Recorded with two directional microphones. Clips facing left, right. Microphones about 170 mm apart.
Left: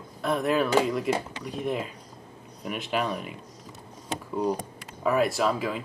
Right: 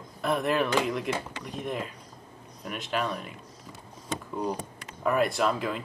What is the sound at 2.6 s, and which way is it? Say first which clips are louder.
Speech: left 2 dB; 5° left (ahead or behind).